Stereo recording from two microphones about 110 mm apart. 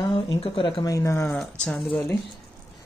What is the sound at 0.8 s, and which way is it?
Speech, 25° left (ahead or behind).